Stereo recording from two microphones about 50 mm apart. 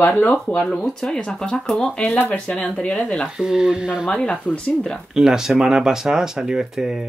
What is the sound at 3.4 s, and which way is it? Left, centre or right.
Speech, centre.